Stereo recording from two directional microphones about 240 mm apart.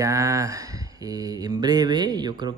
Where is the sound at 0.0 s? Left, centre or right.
Centre.